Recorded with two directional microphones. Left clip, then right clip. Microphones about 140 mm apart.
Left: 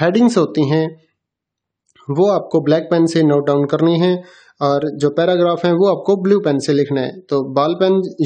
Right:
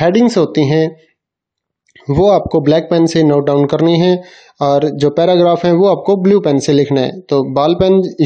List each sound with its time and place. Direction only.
0.0 s speech: 15° right (ahead or behind)
2.1 s speech: 20° right (ahead or behind)